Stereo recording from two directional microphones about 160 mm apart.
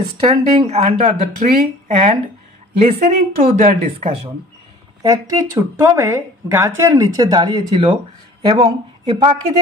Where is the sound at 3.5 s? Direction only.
60° right (ahead or behind).